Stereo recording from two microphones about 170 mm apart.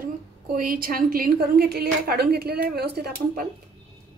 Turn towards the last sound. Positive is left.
turn(degrees=-70)  # may be behind; listen again after turning